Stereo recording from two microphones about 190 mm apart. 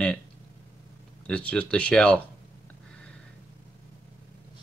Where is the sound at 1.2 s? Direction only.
5° left (ahead or behind).